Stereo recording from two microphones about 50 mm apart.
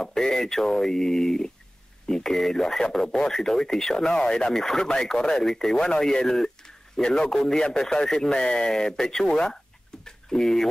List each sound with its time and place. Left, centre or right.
0.0 s speech: centre